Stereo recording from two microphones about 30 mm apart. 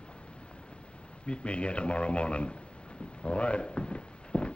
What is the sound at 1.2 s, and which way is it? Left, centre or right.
A man's voice, left.